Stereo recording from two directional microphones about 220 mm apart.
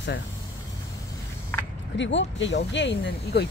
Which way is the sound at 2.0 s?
55° left (ahead or behind).